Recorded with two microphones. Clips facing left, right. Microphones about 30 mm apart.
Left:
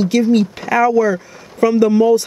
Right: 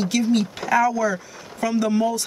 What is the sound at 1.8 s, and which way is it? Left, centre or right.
Speech, centre.